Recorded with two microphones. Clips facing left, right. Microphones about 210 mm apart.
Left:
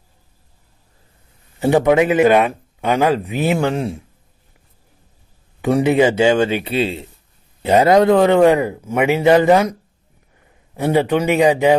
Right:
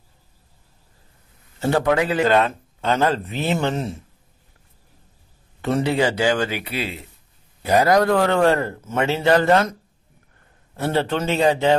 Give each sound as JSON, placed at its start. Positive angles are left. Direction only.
{"t": 1.6, "sound": "speech", "side_deg": 20}
{"t": 5.6, "sound": "speech", "side_deg": 15}
{"t": 10.8, "sound": "speech", "side_deg": 15}